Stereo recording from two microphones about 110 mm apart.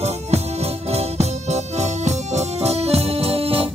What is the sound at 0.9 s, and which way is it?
Organ, 80° right.